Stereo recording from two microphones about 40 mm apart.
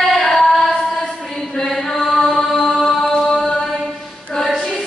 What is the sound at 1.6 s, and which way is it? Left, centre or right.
Chant, centre.